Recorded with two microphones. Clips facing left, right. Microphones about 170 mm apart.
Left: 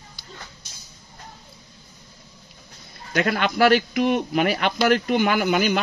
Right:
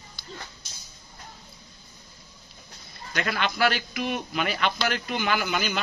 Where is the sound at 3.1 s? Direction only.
50° left (ahead or behind).